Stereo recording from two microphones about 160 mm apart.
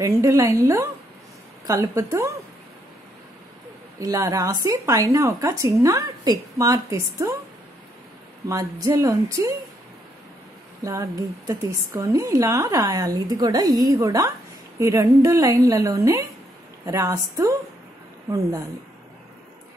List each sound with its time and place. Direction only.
0.0 s a woman's voice: 20° right (ahead or behind)
4.0 s a woman's voice: 20° right (ahead or behind)
8.5 s a woman's voice: 20° right (ahead or behind)
10.8 s a woman's voice: 20° right (ahead or behind)